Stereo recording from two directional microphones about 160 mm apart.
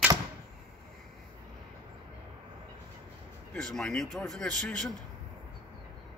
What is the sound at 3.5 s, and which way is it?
Speech, 5° left (ahead or behind).